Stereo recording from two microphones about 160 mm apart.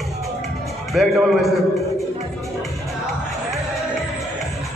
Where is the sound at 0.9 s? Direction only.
Centre (ahead or behind).